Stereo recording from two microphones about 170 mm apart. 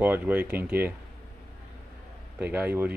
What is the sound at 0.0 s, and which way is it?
Speech, 10° right (ahead or behind).